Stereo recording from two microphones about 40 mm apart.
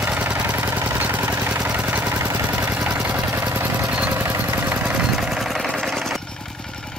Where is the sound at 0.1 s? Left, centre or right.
Right.